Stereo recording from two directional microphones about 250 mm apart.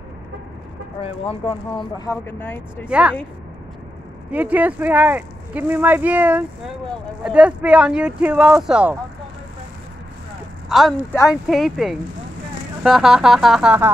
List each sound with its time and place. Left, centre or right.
1.0 s speech: left
2.9 s speech: centre
4.3 s speech: centre
10.7 s speech: centre